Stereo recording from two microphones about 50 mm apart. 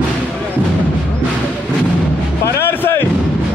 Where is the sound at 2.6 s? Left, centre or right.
Left.